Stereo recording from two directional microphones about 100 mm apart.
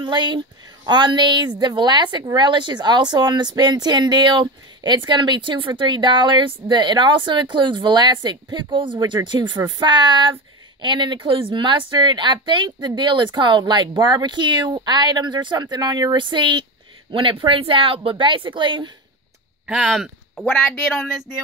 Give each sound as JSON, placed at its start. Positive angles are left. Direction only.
{"t": 0.0, "sound": "speech", "side_deg": -50}
{"t": 19.6, "sound": "speech", "side_deg": -5}